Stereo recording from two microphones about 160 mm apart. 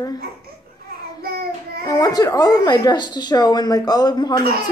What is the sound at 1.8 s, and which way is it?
Speech, 25° left (ahead or behind).